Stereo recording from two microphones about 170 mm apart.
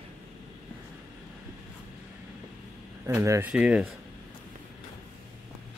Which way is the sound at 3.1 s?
15° right (ahead or behind).